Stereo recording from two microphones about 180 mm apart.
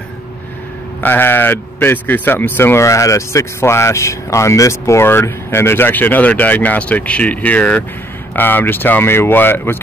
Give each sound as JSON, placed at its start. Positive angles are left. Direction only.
{"t": 1.0, "sound": "speech", "side_deg": 10}